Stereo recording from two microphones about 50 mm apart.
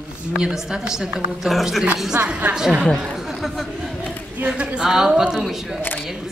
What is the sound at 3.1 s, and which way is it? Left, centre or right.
Chatter, centre.